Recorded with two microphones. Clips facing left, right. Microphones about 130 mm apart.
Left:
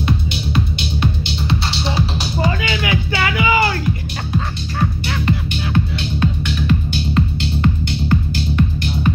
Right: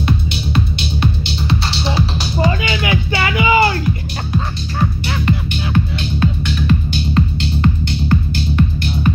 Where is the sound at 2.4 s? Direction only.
25° right (ahead or behind).